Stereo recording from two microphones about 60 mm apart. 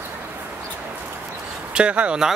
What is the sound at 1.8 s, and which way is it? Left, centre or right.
Speech, centre.